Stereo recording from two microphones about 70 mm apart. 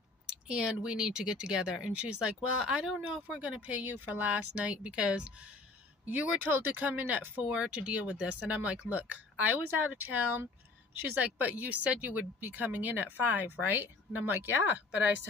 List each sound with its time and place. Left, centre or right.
0.5 s speech: centre
6.0 s speech: right